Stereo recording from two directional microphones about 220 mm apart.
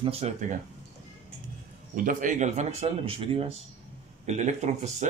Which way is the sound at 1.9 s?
40° right (ahead or behind).